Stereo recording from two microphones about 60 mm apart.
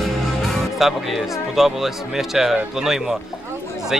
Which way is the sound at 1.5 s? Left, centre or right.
Centre.